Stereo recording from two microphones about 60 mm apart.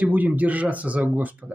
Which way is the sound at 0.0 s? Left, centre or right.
Right.